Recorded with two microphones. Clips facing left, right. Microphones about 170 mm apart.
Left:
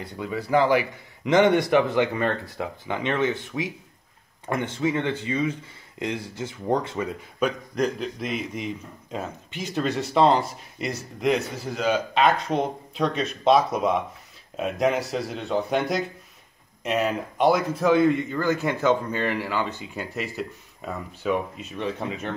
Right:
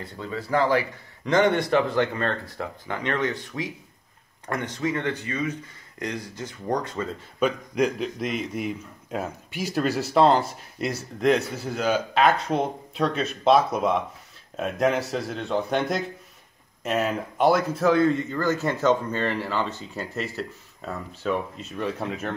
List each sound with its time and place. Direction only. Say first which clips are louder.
0.0 s speech: left 2 dB; 15° left (ahead or behind)
7.7 s a man's voice: right 1 dB; 5° right (ahead or behind)
17.9 s speech: left 1 dB; 15° left (ahead or behind)
21.7 s a man's voice: even; centre (ahead or behind)